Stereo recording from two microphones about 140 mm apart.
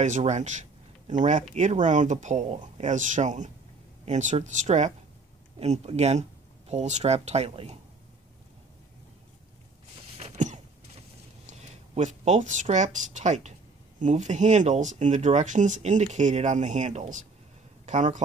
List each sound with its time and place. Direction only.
0.0 s speech: 55° right (ahead or behind)
10.1 s a sound: 55° right (ahead or behind)
11.4 s speech: 60° right (ahead or behind)